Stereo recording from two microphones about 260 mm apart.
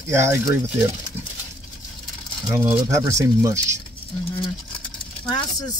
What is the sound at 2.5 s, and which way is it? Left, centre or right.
Speech, centre.